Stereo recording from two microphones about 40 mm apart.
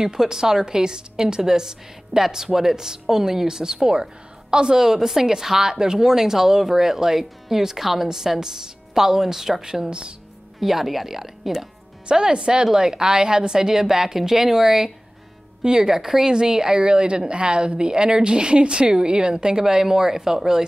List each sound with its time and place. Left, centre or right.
0.0 s a woman's voice: centre
10.6 s a woman's voice: centre
12.1 s a woman's voice: right